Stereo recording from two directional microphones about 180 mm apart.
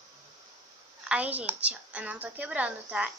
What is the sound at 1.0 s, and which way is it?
A woman's voice, 10° right (ahead or behind).